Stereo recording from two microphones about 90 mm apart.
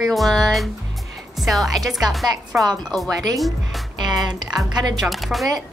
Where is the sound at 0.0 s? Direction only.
Centre (ahead or behind).